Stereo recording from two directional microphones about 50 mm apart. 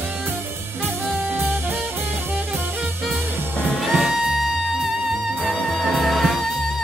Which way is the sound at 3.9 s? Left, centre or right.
Centre.